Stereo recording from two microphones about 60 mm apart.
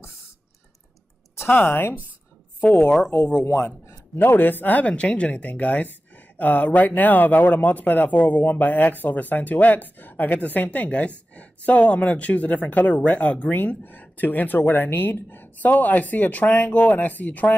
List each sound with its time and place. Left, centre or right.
1.5 s speech: left
3.4 s a man's voice: left